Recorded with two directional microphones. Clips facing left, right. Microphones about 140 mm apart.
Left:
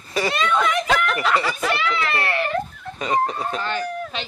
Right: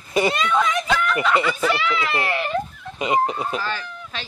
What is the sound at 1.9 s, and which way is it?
Speech, 15° right (ahead or behind).